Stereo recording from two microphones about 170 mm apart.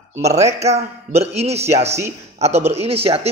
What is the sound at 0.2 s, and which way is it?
Speech, 15° right (ahead or behind).